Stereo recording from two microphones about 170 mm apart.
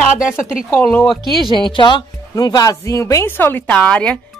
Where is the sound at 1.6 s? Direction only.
30° left (ahead or behind); by 4.2 s 5° left (ahead or behind).